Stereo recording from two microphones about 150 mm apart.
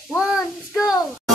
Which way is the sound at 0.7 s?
25° left (ahead or behind).